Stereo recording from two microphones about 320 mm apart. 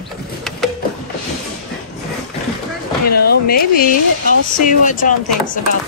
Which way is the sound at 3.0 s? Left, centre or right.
Left.